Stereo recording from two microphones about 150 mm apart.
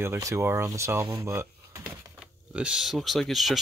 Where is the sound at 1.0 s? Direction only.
20° right (ahead or behind).